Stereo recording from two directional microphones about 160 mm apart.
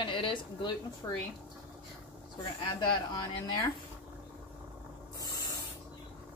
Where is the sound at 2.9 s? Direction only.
25° left (ahead or behind).